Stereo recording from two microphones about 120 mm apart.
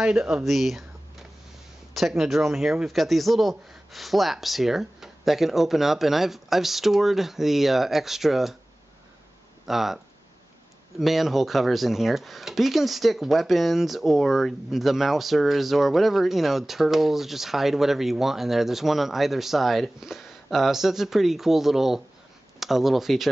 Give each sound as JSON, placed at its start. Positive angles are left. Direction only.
{"t": 0.0, "sound": "speech", "side_deg": -5}
{"t": 2.0, "sound": "speech", "side_deg": 0}
{"t": 9.7, "sound": "speech", "side_deg": 0}
{"t": 11.0, "sound": "speech", "side_deg": 0}